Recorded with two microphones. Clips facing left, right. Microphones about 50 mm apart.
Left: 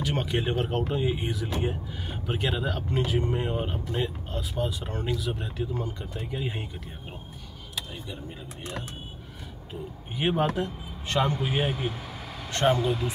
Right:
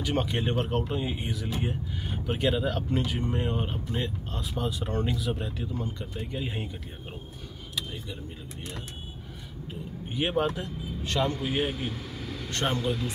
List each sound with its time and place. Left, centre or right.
0.0 s speech: centre
10.1 s speech: centre
11.4 s speech: centre